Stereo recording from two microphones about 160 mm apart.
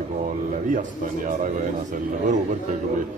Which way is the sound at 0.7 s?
55° right (ahead or behind).